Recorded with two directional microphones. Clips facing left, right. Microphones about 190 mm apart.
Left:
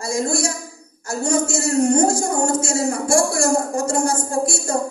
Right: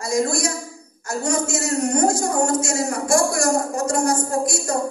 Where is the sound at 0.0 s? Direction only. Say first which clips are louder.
Even; 30° left (ahead or behind).